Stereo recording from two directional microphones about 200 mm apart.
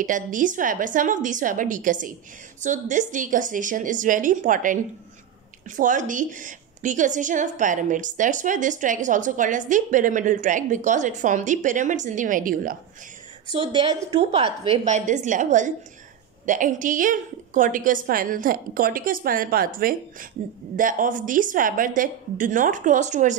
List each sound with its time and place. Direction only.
0.0 s a woman's voice: 40° right (ahead or behind)
13.6 s a woman's voice: 20° right (ahead or behind); by 23.3 s 40° right (ahead or behind)